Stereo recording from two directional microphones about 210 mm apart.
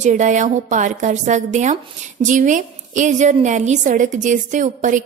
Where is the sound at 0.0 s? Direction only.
35° right (ahead or behind).